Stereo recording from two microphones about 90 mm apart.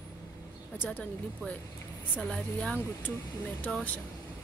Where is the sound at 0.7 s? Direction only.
25° left (ahead or behind).